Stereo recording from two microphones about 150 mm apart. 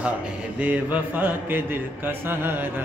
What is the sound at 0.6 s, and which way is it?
Mantra, 10° right (ahead or behind).